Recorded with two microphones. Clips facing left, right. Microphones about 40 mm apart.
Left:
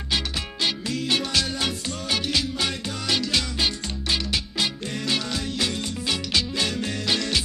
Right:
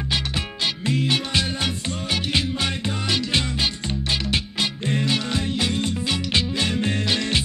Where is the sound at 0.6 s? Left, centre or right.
Right.